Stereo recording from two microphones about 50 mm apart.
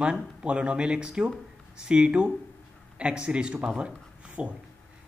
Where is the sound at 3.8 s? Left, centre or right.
Right.